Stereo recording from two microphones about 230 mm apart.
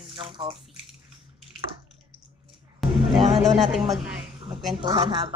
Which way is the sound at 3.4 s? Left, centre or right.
Centre.